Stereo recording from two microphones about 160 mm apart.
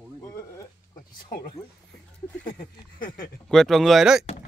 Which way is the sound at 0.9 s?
60° left (ahead or behind).